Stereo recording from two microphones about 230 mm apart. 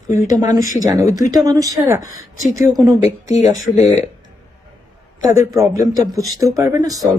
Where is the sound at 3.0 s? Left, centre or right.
Left.